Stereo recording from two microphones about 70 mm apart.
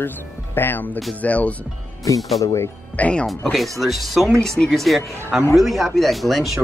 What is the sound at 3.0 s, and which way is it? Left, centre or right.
Speech, centre.